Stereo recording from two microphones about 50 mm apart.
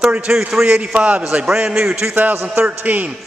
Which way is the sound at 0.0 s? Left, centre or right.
Centre.